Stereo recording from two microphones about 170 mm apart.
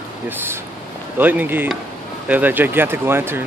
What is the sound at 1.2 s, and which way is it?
Speech, 10° right (ahead or behind).